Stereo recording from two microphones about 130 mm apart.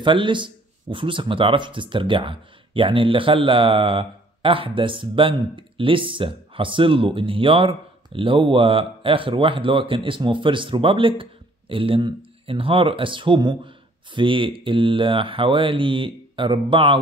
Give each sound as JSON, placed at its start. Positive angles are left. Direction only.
{"t": 0.0, "sound": "speech", "side_deg": -40}